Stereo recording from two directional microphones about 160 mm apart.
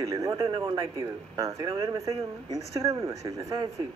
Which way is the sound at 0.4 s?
30° right (ahead or behind).